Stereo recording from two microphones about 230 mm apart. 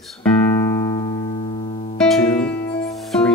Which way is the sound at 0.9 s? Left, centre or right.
Left.